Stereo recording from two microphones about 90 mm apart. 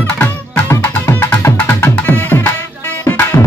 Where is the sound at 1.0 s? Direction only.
25° left (ahead or behind).